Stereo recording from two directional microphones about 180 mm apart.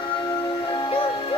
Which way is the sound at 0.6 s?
25° left (ahead or behind).